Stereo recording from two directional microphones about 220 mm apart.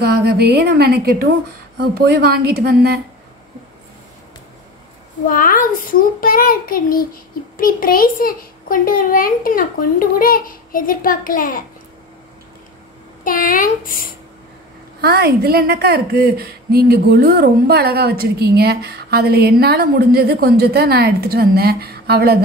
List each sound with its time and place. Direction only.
0.0 s a woman's voice: 45° right (ahead or behind)
5.3 s a child's voice: 40° left (ahead or behind)
13.2 s a child's voice: 40° left (ahead or behind)
15.0 s a woman's voice: 45° right (ahead or behind)